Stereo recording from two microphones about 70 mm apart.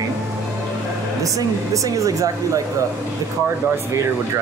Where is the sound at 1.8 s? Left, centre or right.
Right.